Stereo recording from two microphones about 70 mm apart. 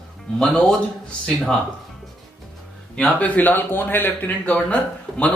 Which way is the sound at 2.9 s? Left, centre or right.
Centre.